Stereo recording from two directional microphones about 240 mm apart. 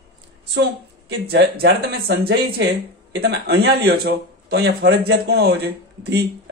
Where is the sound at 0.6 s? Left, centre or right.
Right.